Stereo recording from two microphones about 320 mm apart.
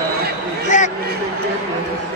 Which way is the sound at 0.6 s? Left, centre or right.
Left.